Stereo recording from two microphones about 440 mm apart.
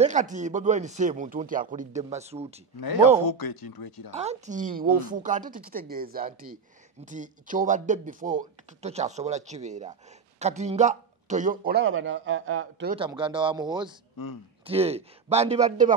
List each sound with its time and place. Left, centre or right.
0.0 s speech: centre
2.8 s speech: left
4.1 s speech: centre
12.9 s speech: centre
14.1 s speech: left
14.7 s speech: centre